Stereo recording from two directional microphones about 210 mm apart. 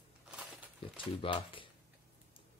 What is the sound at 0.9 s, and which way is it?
Speech, 25° left (ahead or behind).